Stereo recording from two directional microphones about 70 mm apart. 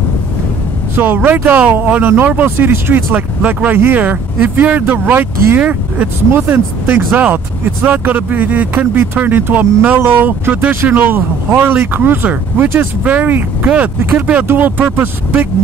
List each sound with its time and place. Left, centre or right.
0.9 s speech: right